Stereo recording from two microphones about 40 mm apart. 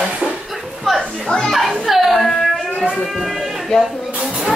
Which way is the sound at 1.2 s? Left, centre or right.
Centre.